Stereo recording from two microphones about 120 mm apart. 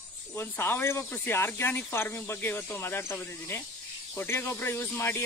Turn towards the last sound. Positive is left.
turn(degrees=20)  # may be behind; listen again after turning